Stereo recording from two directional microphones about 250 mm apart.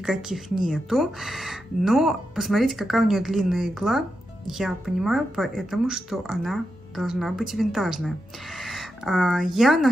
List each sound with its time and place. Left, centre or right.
0.0 s speech: centre